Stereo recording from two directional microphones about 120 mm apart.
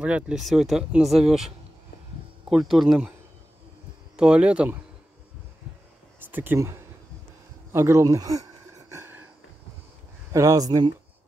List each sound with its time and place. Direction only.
0.0 s speech: 10° right (ahead or behind)
2.5 s speech: 5° right (ahead or behind)
4.2 s speech: 10° right (ahead or behind)
6.1 s speech: 15° right (ahead or behind)
7.7 s a sound: 20° right (ahead or behind)
10.3 s speech: 30° right (ahead or behind)